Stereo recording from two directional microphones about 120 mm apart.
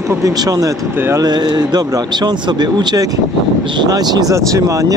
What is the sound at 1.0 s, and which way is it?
Speech, 20° right (ahead or behind).